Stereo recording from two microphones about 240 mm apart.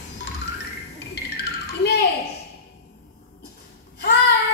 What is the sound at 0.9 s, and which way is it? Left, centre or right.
Music, left.